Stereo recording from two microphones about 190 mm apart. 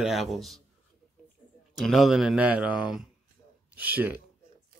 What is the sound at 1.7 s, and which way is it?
Speech, centre (ahead or behind).